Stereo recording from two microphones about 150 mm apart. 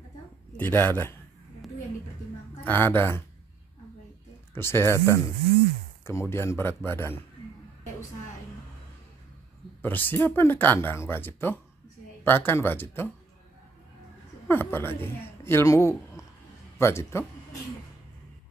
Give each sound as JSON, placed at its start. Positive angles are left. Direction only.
{"t": 0.6, "sound": "speech", "side_deg": 15}
{"t": 2.6, "sound": "speech", "side_deg": 15}
{"t": 4.6, "sound": "speech", "side_deg": 15}
{"t": 9.8, "sound": "speech", "side_deg": 15}
{"t": 14.5, "sound": "speech", "side_deg": 15}